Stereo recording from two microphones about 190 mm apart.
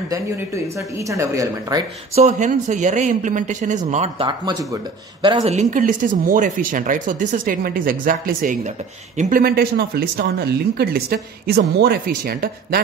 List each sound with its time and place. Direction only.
0.7 s a woman's voice: 15° right (ahead or behind)
2.1 s speech: 40° right (ahead or behind)
9.4 s a woman's voice: 50° right (ahead or behind)